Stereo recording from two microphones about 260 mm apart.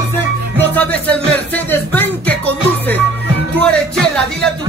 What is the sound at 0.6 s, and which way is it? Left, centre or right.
Music, centre.